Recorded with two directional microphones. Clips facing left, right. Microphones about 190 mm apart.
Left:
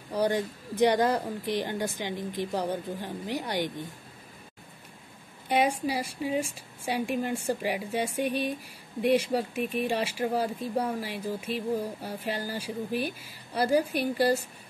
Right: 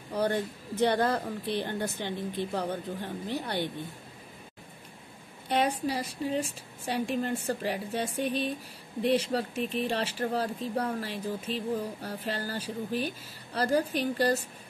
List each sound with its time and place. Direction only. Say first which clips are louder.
0.1 s speech: left 2 dB; 15° left (ahead or behind)
5.5 s speech: left 2 dB; 10° left (ahead or behind)